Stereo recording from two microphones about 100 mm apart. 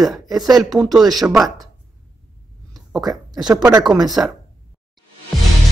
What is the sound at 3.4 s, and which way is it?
Speech, 40° right (ahead or behind).